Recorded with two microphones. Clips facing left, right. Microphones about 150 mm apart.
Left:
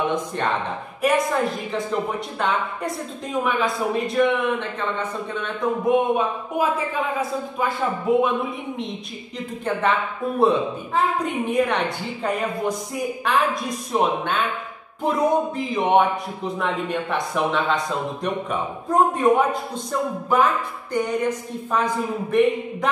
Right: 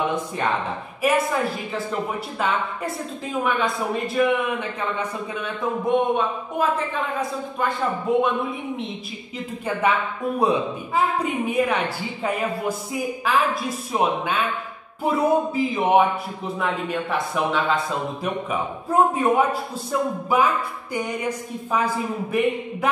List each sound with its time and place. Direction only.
0.1 s speech: 5° right (ahead or behind)
3.3 s speech: centre (ahead or behind)
5.9 s speech: 5° left (ahead or behind)
9.7 s a woman's voice: 10° right (ahead or behind)
11.0 s speech: 5° right (ahead or behind)